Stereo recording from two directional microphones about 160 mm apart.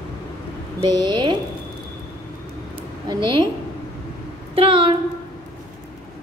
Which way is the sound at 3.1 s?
30° right (ahead or behind).